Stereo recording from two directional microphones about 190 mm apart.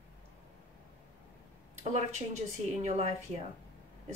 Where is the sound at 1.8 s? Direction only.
35° right (ahead or behind).